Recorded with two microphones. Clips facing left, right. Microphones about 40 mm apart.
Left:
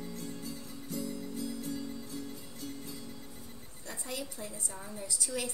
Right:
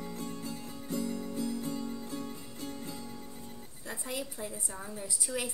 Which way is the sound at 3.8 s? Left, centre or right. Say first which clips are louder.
Right 2 dB; centre.